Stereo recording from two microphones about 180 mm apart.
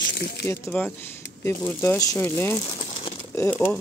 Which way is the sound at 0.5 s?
10° left (ahead or behind).